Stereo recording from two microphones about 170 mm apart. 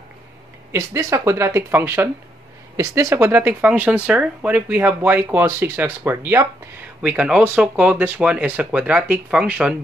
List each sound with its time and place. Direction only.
0.7 s speech: 15° right (ahead or behind)